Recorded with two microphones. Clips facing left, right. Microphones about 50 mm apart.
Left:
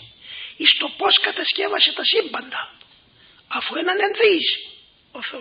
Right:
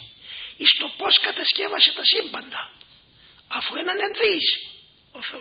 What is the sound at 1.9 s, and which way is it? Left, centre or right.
Speech, left.